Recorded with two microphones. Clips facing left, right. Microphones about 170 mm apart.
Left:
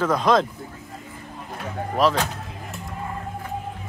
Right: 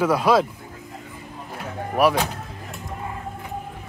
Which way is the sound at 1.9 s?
10° right (ahead or behind).